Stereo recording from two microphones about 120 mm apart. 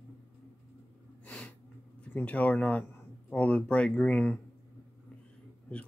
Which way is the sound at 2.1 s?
10° left (ahead or behind).